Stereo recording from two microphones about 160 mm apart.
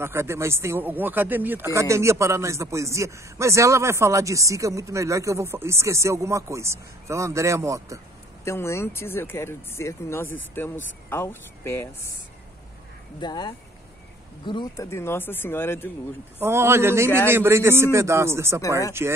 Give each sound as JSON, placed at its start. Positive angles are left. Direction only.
{"t": 0.0, "sound": "speech", "side_deg": -15}
{"t": 8.5, "sound": "speech", "side_deg": 15}
{"t": 13.2, "sound": "speech", "side_deg": 25}
{"t": 14.9, "sound": "speech", "side_deg": 15}
{"t": 16.3, "sound": "speech", "side_deg": -15}